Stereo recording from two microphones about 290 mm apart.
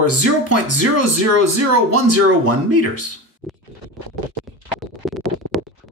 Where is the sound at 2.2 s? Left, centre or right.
Right.